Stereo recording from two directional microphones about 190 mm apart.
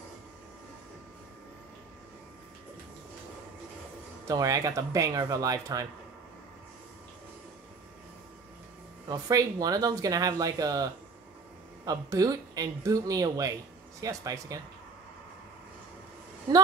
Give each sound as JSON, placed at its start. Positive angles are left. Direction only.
{"t": 4.3, "sound": "speech", "side_deg": -20}
{"t": 9.1, "sound": "speech", "side_deg": -20}